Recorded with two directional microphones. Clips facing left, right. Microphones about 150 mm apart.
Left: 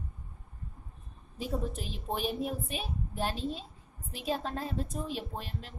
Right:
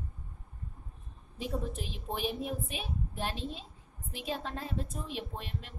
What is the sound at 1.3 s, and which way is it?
A woman's voice, 40° left (ahead or behind).